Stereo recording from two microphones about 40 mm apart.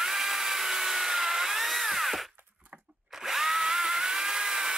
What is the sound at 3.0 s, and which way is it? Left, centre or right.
Drill, centre.